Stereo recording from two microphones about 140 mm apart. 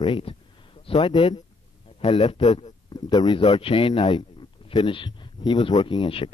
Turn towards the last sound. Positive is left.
turn(degrees=35)  # may be behind; listen again after turning